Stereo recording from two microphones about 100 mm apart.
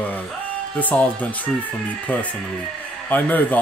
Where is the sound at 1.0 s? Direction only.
15° left (ahead or behind).